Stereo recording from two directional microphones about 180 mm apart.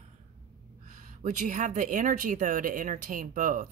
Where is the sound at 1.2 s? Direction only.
45° right (ahead or behind).